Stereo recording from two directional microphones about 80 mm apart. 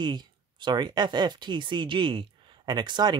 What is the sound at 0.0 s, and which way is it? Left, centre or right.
Speech, right.